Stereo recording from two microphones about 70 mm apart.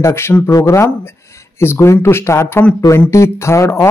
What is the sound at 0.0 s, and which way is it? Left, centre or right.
Speech, left.